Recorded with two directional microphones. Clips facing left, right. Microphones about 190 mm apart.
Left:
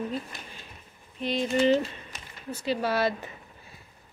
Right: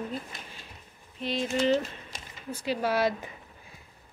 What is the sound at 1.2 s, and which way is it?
Speech, centre (ahead or behind).